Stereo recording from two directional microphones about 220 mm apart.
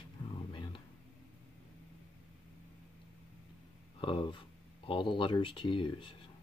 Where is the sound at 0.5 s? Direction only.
20° left (ahead or behind).